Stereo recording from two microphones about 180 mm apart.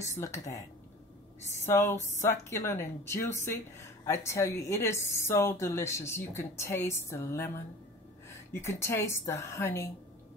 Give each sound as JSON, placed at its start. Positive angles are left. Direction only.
{"t": 0.0, "sound": "a woman's voice", "side_deg": 15}
{"t": 1.7, "sound": "a woman's voice", "side_deg": 15}